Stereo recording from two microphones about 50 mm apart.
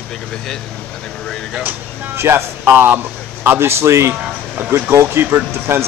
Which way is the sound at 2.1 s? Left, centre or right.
Right.